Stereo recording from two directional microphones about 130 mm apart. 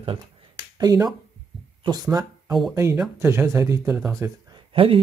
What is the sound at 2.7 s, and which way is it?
Speech, 20° right (ahead or behind).